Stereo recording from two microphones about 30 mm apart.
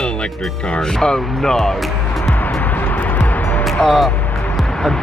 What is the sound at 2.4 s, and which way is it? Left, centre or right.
Music, left.